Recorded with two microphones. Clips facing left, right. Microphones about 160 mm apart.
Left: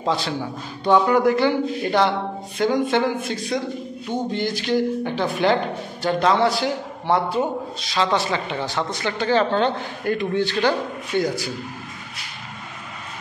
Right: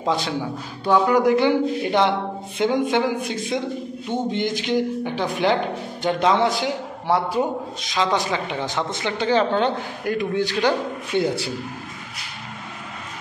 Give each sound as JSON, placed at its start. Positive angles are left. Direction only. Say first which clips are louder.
{"t": 0.0, "sound": "a man's voice", "louder": "even", "side_deg": -20}
{"t": 0.8, "sound": "speech", "louder": "even", "side_deg": -5}
{"t": 11.1, "sound": "speech", "louder": "right 1 dB", "side_deg": -25}